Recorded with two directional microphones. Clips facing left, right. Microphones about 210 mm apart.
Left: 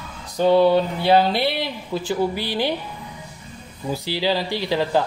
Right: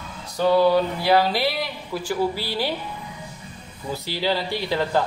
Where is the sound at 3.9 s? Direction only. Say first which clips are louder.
Left 2 dB; 15° left (ahead or behind).